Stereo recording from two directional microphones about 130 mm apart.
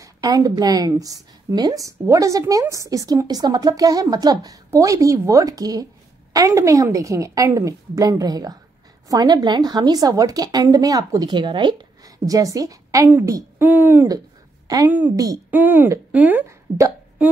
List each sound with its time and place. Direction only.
0.0 s a woman's voice: 30° right (ahead or behind); by 15.1 s 15° right (ahead or behind)
15.1 s a woman's voice: 25° right (ahead or behind)
15.5 s speech: 15° right (ahead or behind)
17.2 s a sound: 10° right (ahead or behind)